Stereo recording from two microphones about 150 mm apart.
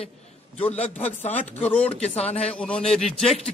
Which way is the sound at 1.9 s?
45° left (ahead or behind).